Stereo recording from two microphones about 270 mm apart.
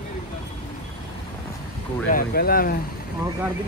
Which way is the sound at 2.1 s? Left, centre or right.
Left.